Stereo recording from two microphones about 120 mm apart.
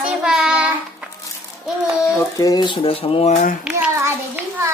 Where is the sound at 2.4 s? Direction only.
35° left (ahead or behind); by 3.5 s 70° left (ahead or behind).